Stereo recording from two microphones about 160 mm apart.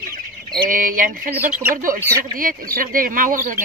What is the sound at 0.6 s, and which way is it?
Speech, 55° right (ahead or behind).